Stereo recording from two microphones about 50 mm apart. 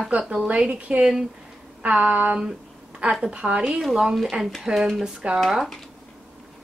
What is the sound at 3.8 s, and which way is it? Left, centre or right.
Speech, centre.